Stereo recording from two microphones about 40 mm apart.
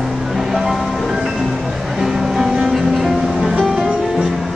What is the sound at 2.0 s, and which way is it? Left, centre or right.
Music, centre.